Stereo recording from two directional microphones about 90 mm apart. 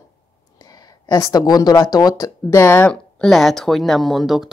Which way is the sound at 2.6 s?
25° left (ahead or behind).